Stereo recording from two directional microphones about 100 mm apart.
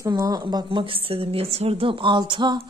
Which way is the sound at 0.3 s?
45° right (ahead or behind).